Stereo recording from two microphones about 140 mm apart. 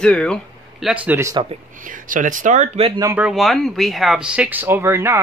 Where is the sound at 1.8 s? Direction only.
75° right (ahead or behind).